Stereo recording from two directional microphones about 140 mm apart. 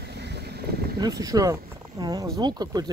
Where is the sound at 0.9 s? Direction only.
25° right (ahead or behind).